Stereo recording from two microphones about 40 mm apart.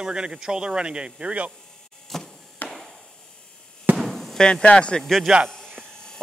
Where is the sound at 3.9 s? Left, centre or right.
Centre.